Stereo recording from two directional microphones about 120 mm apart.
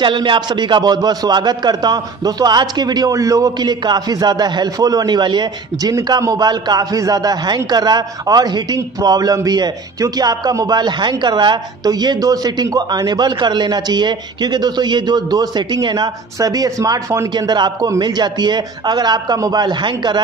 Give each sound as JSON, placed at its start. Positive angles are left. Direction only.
{"t": 0.0, "sound": "a man's voice", "side_deg": -40}
{"t": 17.3, "sound": "a man's voice", "side_deg": -40}